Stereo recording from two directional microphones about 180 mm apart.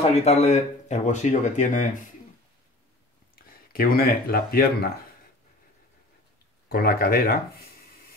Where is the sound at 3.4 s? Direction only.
55° left (ahead or behind).